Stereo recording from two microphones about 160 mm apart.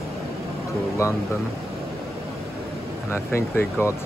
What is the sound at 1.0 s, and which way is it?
Speech, 15° left (ahead or behind).